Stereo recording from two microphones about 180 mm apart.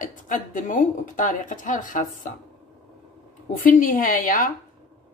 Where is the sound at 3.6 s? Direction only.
50° left (ahead or behind).